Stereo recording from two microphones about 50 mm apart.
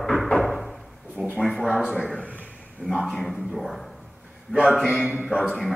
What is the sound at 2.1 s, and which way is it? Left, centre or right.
Speech, left.